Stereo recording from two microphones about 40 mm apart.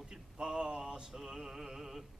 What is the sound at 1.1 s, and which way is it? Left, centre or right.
Speech, centre.